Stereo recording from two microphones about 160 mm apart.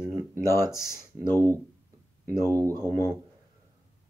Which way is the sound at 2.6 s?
20° right (ahead or behind).